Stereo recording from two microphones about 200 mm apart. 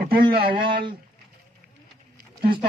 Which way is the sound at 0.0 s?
50° right (ahead or behind).